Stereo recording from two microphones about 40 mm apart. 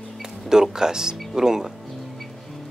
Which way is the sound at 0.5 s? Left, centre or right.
Centre.